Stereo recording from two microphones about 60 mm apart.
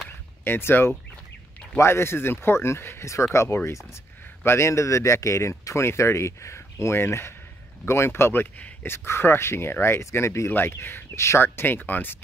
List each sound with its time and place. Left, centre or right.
0.4 s speech: left
10.5 s speech: left